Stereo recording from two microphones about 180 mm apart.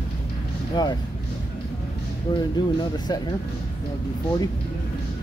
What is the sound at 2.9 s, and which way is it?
Speech, 25° left (ahead or behind).